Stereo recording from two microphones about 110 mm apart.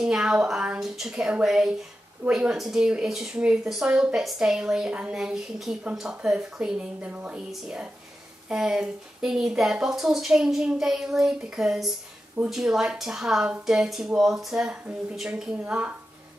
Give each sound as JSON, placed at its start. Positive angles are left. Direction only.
{"t": 0.0, "sound": "a woman's voice", "side_deg": -5}